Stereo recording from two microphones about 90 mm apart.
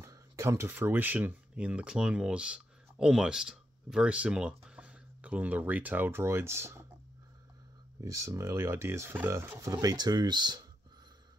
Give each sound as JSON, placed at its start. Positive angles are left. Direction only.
{"t": 0.0, "sound": "a sound", "side_deg": -35}
{"t": 0.7, "sound": "speech", "side_deg": -25}
{"t": 8.0, "sound": "speech", "side_deg": -35}
{"t": 9.6, "sound": "speech", "side_deg": -45}